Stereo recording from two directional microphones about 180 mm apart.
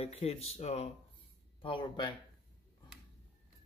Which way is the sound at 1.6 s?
25° left (ahead or behind).